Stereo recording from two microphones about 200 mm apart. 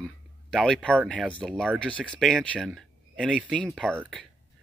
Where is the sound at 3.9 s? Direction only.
10° right (ahead or behind).